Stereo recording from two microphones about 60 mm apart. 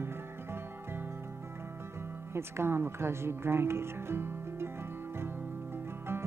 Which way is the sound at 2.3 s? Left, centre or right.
Right.